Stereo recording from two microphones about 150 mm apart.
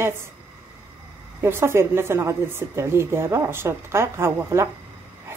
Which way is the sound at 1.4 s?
15° right (ahead or behind).